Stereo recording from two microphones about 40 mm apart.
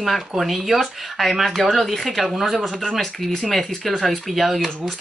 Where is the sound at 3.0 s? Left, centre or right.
Centre.